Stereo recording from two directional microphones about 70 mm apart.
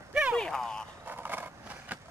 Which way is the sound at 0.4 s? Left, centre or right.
Centre.